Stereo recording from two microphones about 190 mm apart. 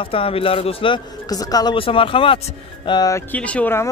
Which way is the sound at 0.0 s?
30° left (ahead or behind).